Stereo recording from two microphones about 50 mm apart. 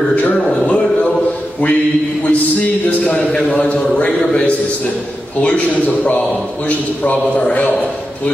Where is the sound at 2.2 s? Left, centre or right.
Left.